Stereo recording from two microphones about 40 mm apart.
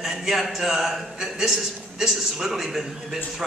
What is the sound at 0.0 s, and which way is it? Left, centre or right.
A man's voice, centre.